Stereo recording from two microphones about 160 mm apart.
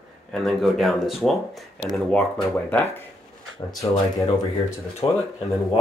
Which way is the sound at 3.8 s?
30° left (ahead or behind).